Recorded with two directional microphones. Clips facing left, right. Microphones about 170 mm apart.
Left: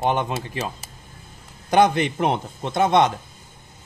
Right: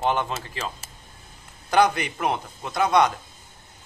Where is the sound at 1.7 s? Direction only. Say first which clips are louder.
Left 3 dB; 25° left (ahead or behind).